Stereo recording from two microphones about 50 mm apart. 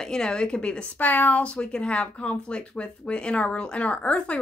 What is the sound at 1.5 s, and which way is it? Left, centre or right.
Speech, centre.